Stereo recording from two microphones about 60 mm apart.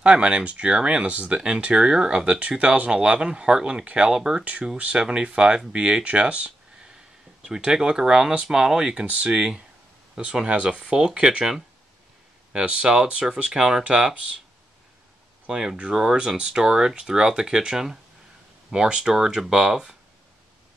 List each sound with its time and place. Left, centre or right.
0.0 s speech: centre
4.7 s speech: centre
12.5 s speech: centre
15.4 s speech: centre